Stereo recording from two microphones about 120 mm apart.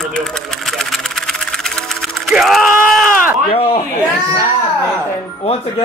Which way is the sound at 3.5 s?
50° left (ahead or behind).